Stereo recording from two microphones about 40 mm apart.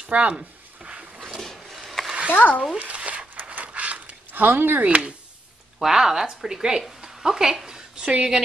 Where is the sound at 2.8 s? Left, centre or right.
Right.